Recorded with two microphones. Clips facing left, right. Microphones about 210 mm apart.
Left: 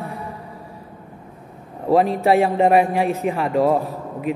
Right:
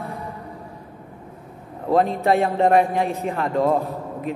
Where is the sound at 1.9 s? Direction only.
15° left (ahead or behind).